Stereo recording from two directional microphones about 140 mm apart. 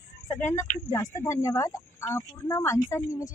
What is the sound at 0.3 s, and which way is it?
Speech, 20° left (ahead or behind).